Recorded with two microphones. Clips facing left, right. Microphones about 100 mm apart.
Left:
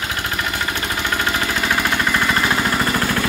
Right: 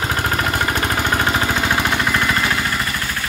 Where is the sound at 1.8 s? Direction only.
Centre (ahead or behind).